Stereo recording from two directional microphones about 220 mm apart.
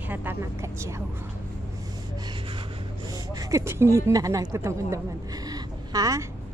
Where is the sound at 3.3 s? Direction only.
15° right (ahead or behind).